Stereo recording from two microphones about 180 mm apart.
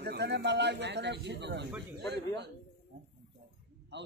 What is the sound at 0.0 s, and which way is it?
Speech, 70° right (ahead or behind).